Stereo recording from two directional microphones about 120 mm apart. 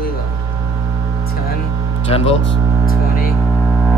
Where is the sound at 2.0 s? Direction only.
55° left (ahead or behind).